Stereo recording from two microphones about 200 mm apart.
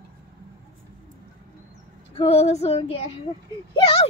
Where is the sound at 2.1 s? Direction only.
30° left (ahead or behind).